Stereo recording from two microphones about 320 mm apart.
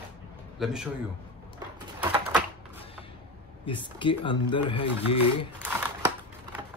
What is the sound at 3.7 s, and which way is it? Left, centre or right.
Speech, centre.